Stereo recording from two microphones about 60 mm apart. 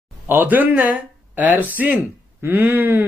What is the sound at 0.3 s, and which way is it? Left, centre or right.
Speech, right.